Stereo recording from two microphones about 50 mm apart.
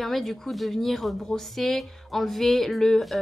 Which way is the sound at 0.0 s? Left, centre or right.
Centre.